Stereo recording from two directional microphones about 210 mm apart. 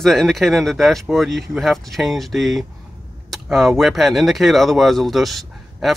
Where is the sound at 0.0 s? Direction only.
Centre (ahead or behind).